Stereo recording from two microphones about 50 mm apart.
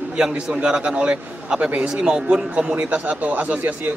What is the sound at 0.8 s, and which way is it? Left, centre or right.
A man's voice, right.